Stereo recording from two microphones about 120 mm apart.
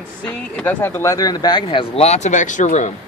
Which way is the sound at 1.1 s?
35° left (ahead or behind).